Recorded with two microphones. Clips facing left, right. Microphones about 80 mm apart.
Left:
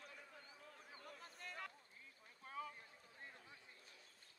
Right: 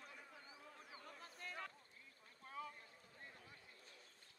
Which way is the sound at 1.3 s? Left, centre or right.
Right.